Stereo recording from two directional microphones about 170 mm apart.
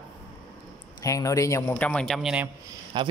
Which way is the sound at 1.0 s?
20° left (ahead or behind).